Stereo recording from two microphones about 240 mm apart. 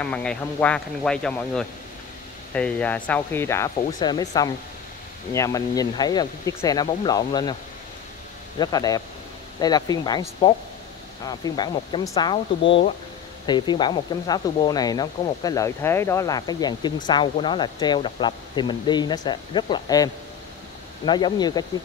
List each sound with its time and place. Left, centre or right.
0.0 s speech: centre
8.5 s speech: centre
11.2 s speech: centre